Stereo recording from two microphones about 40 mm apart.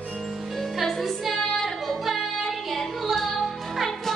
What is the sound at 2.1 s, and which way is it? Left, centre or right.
Music, centre.